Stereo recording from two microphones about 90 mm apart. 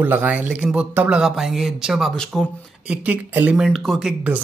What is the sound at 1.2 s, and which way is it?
Speech, 5° right (ahead or behind).